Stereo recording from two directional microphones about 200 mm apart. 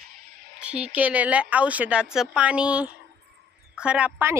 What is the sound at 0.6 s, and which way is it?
Speech, 5° right (ahead or behind).